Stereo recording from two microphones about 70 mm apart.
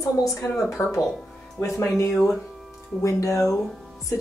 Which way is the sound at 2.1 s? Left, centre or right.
Centre.